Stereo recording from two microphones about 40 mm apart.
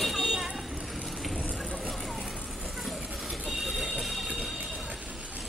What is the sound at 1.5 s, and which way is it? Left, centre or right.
Vehicle, left.